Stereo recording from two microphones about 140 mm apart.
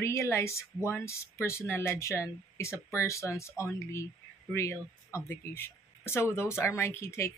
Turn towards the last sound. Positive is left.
turn(degrees=20)  # may be behind; listen again after turning